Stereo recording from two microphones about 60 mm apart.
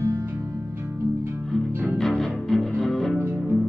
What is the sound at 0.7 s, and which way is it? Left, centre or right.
Music, right.